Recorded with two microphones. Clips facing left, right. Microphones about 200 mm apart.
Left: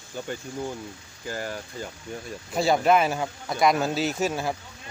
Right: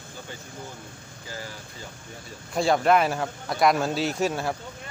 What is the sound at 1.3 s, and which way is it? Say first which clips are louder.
Speech: left 6 dB; 50° left (ahead or behind).